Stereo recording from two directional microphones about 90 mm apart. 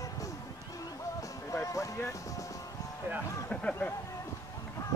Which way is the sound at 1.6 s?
35° left (ahead or behind).